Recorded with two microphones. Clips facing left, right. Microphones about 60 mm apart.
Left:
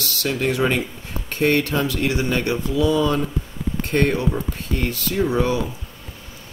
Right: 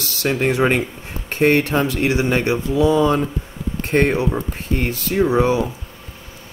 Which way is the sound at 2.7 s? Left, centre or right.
Right.